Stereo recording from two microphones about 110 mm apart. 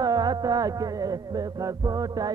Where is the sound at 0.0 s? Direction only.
35° right (ahead or behind).